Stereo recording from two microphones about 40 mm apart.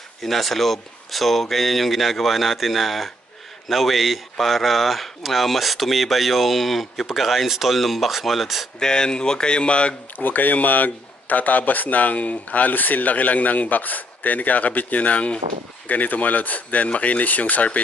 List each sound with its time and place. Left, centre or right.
0.2 s speech: centre
8.7 s speech: centre
10.1 s a man's voice: left